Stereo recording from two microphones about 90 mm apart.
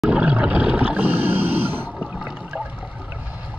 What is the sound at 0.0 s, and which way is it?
Whale vocalization, 10° right (ahead or behind).